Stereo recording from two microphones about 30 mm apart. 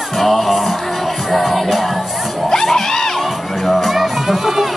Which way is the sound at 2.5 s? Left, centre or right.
Centre.